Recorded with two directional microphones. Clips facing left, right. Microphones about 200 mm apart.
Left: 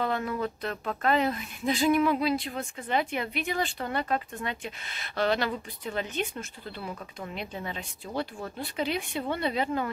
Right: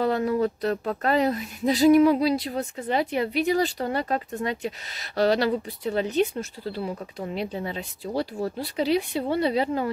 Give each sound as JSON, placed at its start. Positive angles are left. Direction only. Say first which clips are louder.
{"t": 0.0, "sound": "speech", "louder": "right 7 dB", "side_deg": -35}